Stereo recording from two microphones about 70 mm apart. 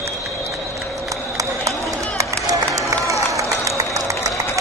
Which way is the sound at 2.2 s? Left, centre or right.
Right.